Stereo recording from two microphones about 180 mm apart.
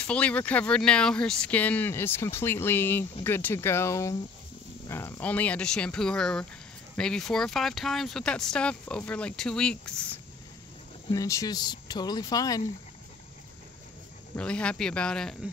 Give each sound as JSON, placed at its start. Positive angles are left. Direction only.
{"t": 0.0, "sound": "speech", "side_deg": 5}
{"t": 11.1, "sound": "speech", "side_deg": 20}
{"t": 14.3, "sound": "speech", "side_deg": 5}